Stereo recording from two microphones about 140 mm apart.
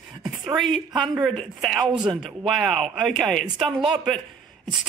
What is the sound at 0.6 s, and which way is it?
Speech, centre (ahead or behind).